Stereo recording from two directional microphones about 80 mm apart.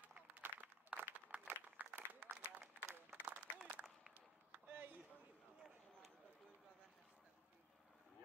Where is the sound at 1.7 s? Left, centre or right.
Centre.